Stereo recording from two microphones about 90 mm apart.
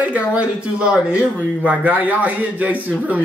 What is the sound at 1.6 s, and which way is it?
A man's voice, 15° right (ahead or behind).